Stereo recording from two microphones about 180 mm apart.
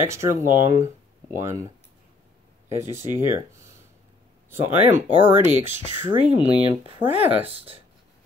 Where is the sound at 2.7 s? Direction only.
15° right (ahead or behind).